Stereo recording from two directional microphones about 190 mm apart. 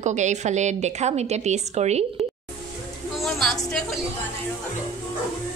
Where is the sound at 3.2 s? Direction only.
Centre (ahead or behind).